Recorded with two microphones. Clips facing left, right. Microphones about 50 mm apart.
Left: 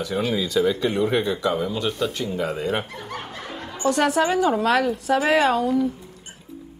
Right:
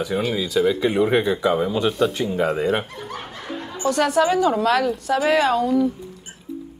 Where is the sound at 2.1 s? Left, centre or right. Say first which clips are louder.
Right 4 dB; centre.